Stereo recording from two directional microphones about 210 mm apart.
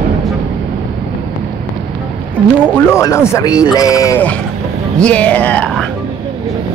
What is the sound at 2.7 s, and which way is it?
A man's voice, 15° left (ahead or behind).